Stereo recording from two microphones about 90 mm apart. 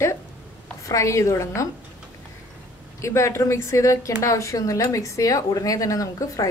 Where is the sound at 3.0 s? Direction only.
30° left (ahead or behind).